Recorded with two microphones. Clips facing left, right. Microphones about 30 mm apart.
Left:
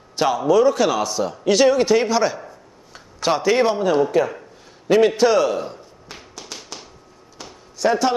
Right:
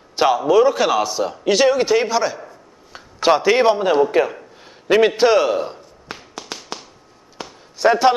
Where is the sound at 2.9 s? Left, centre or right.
Centre.